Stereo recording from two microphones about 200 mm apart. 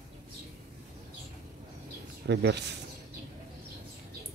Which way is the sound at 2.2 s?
60° right (ahead or behind).